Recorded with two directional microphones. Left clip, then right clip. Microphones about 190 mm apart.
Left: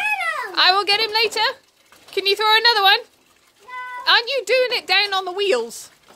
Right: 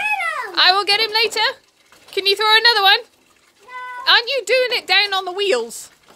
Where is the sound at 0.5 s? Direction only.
Centre (ahead or behind).